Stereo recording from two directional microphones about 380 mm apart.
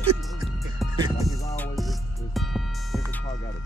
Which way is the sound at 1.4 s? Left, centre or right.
Centre.